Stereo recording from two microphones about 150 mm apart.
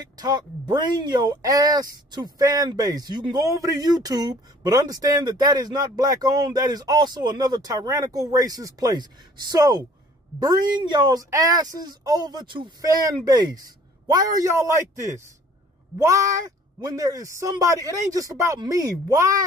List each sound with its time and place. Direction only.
0.0 s speech: 30° right (ahead or behind)
16.8 s speech: 25° right (ahead or behind)